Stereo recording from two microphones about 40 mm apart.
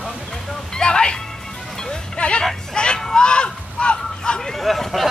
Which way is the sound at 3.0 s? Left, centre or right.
Left.